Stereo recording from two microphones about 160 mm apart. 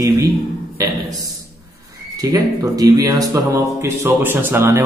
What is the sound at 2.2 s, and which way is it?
A man's voice, 20° right (ahead or behind).